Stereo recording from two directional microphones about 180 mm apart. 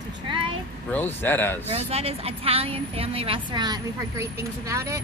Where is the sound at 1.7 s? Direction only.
35° right (ahead or behind).